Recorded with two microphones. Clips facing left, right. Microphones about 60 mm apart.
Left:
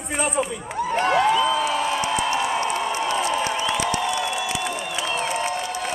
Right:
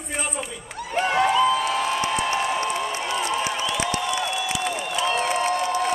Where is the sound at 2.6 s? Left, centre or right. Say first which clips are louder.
Left 2 dB; left.